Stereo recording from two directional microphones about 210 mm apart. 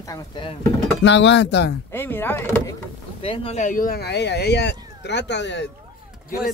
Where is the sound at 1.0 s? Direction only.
60° left (ahead or behind).